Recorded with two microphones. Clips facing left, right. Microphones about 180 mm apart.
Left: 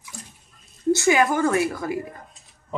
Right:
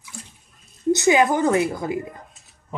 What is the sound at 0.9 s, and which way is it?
A woman's voice, 20° right (ahead or behind).